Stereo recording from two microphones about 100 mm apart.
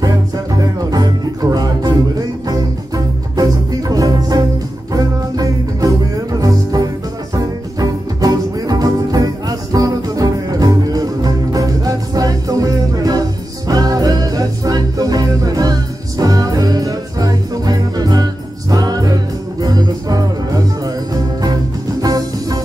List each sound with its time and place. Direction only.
0.6 s music: 40° right (ahead or behind)